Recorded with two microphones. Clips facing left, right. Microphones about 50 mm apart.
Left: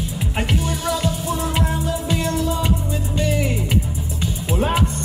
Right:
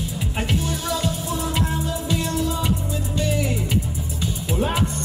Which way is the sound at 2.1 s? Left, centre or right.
Left.